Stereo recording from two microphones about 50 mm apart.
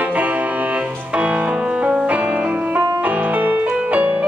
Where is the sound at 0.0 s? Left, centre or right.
Right.